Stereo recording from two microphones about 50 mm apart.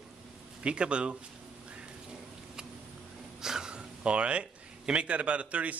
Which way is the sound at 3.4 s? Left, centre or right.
Centre.